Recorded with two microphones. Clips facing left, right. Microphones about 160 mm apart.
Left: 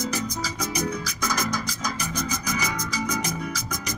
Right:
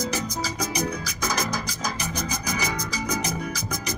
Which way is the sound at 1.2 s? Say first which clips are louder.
Even; 30° right (ahead or behind).